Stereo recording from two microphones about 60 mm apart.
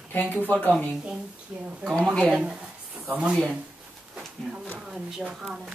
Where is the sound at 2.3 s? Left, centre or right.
Centre.